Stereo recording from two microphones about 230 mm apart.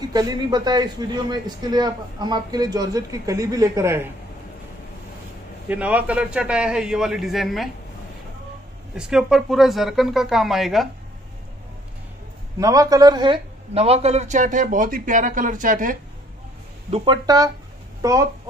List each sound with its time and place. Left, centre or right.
0.1 s a man's voice: centre
5.7 s a man's voice: centre
8.9 s a man's voice: centre
12.5 s speech: centre; by 16.0 s right
16.9 s a man's voice: right